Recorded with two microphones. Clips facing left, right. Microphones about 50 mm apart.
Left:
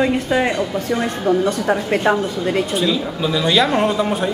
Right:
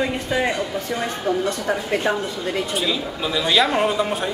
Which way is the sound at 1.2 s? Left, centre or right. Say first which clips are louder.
Left 5 dB; centre.